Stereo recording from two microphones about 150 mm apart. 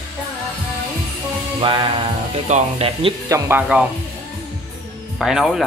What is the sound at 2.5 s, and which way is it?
Speech, 40° right (ahead or behind).